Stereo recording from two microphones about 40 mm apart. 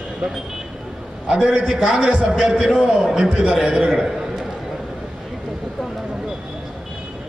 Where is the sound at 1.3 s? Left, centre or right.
Centre.